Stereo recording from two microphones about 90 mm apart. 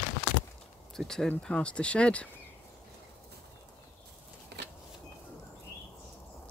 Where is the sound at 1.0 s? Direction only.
5° left (ahead or behind).